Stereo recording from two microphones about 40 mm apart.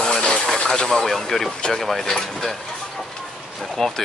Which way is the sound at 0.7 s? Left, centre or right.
Centre.